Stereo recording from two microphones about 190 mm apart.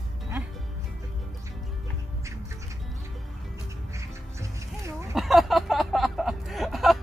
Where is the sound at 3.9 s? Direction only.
15° right (ahead or behind).